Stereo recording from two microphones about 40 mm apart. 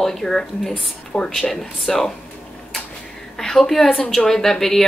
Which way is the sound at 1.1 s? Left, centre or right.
Left.